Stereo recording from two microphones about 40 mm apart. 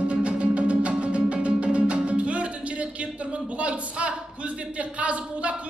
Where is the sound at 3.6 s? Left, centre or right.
Right.